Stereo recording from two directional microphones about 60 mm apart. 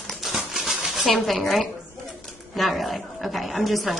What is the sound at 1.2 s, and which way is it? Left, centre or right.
A woman's voice, centre.